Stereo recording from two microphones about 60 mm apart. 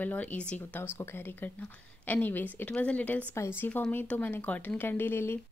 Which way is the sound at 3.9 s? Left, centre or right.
Left.